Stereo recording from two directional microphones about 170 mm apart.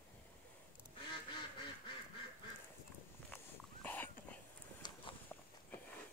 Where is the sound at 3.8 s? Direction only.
10° left (ahead or behind).